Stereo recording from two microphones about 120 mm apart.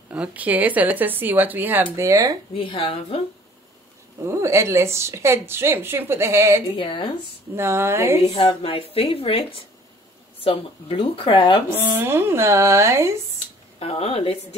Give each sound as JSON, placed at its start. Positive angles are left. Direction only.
{"t": 0.1, "sound": "a woman's voice", "side_deg": -10}
{"t": 2.0, "sound": "a woman's voice", "side_deg": -25}
{"t": 2.5, "sound": "speech", "side_deg": 50}
{"t": 4.3, "sound": "a woman's voice", "side_deg": -25}
{"t": 6.8, "sound": "speech", "side_deg": 45}
{"t": 7.5, "sound": "a woman's voice", "side_deg": -20}
{"t": 8.4, "sound": "speech", "side_deg": 45}
{"t": 11.7, "sound": "a woman's voice", "side_deg": -20}
{"t": 13.7, "sound": "speech", "side_deg": 55}